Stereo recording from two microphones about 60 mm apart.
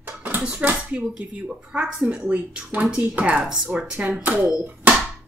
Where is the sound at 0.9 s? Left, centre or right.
Right.